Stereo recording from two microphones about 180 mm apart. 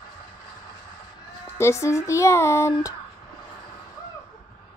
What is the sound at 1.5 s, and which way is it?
Speech, 15° left (ahead or behind).